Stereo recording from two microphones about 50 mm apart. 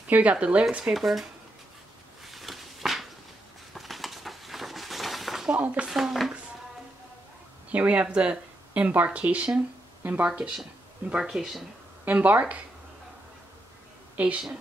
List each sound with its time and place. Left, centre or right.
0.1 s speech: right
0.9 s speech: centre
2.2 s a sound: centre
5.5 s speech: right
5.9 s speech: centre
7.7 s speech: right
11.2 s speech: centre
12.0 s speech: right
14.1 s a woman's voice: right